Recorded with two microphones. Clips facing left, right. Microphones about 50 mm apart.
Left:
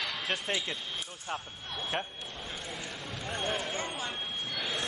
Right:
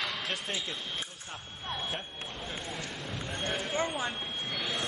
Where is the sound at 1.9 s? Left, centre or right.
Left.